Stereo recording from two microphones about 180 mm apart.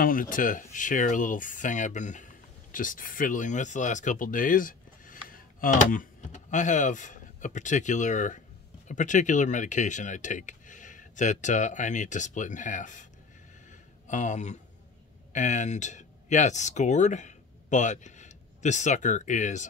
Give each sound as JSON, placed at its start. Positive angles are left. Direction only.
{"t": 0.0, "sound": "speech", "side_deg": 50}
{"t": 13.7, "sound": "a sound", "side_deg": 40}
{"t": 15.3, "sound": "speech", "side_deg": 40}